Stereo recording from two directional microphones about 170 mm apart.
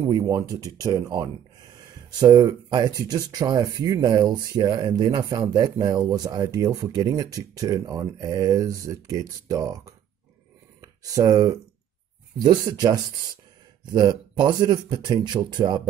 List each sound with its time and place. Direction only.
0.0 s speech: 25° right (ahead or behind)